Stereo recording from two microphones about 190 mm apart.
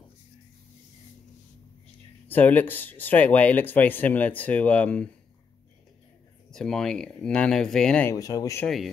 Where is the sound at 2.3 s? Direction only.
10° left (ahead or behind).